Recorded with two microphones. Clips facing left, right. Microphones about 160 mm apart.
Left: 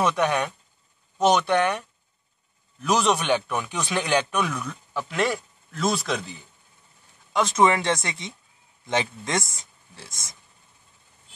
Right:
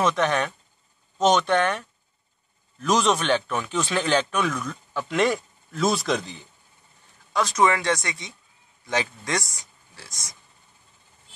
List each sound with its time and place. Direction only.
0.0 s speech: 10° left (ahead or behind)
7.3 s speech: 25° left (ahead or behind)